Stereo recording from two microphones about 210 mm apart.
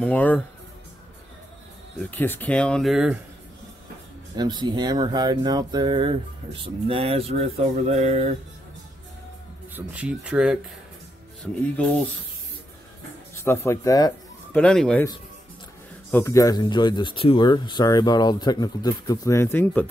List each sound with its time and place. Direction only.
0.0 s speech: 5° left (ahead or behind)
2.0 s speech: 10° left (ahead or behind)
4.4 s speech: 20° right (ahead or behind)
9.8 s speech: 5° right (ahead or behind)
13.3 s speech: 10° left (ahead or behind)
14.5 s speech: 5° left (ahead or behind)
16.1 s speech: 10° left (ahead or behind)